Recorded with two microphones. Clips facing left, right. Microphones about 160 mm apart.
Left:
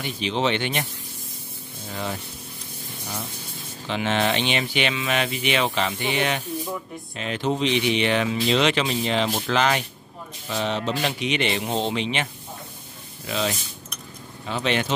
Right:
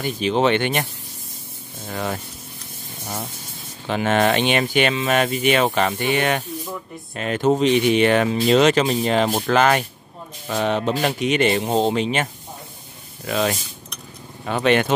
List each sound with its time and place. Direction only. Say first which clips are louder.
0.0 s speech: right 5 dB; 50° right (ahead or behind)
1.9 s speech: right 4 dB; 45° right (ahead or behind)
3.8 s speech: right 5 dB; 50° right (ahead or behind)
13.3 s speech: right 5 dB; 50° right (ahead or behind)